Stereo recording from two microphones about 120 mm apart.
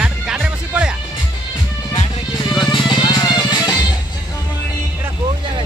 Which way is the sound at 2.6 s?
40° left (ahead or behind).